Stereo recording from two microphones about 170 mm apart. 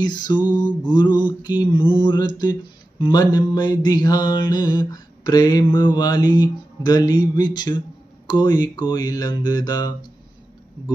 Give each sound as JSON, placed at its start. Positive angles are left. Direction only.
{"t": 0.0, "sound": "mantra", "side_deg": 25}